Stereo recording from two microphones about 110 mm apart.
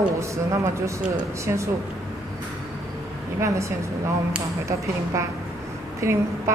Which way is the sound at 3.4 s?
25° right (ahead or behind).